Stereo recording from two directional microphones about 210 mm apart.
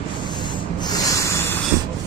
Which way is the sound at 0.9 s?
15° left (ahead or behind).